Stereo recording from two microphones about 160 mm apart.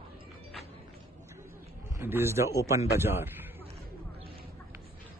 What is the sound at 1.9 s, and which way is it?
A man's voice, 15° right (ahead or behind).